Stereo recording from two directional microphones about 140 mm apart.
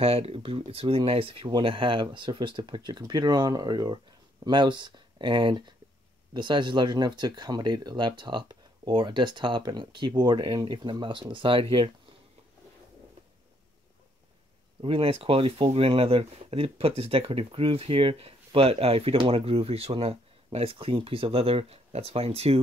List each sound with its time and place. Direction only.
0.0 s speech: 45° right (ahead or behind)
14.8 s speech: 40° right (ahead or behind)